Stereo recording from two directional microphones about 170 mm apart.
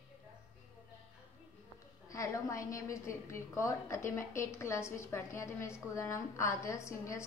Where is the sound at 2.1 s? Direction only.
20° left (ahead or behind).